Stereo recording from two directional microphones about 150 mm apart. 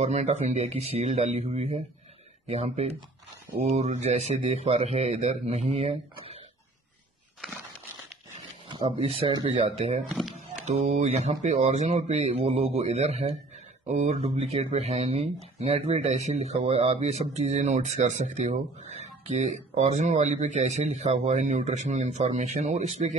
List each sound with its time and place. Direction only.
0.0 s speech: 50° right (ahead or behind)
8.6 s speech: 30° right (ahead or behind)
10.0 s a sound: centre (ahead or behind)
10.3 s speech: 50° right (ahead or behind)